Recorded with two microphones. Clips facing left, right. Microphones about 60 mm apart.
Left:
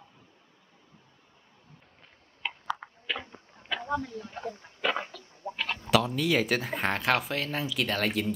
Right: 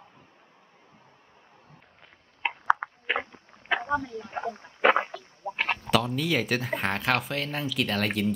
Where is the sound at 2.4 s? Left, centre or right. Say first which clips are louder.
Right 5 dB; right.